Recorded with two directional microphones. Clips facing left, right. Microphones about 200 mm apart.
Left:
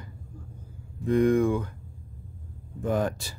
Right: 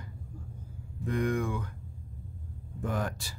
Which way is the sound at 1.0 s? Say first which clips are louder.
Left 9 dB; 25° left (ahead or behind).